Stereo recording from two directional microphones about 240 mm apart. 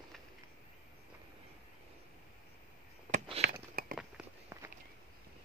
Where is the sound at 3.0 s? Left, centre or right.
Right.